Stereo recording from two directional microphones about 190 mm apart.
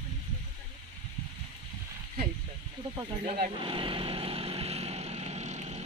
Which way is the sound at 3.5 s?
25° right (ahead or behind).